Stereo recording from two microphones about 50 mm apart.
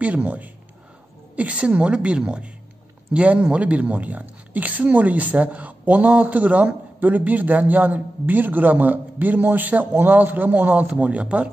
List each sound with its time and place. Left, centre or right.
0.0 s a woman's voice: right